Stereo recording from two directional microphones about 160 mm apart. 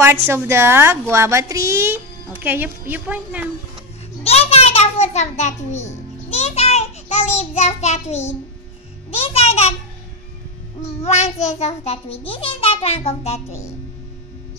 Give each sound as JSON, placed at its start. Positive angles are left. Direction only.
{"t": 0.0, "sound": "a woman's voice", "side_deg": -15}
{"t": 4.2, "sound": "a child's voice", "side_deg": 40}
{"t": 11.0, "sound": "a child's voice", "side_deg": 40}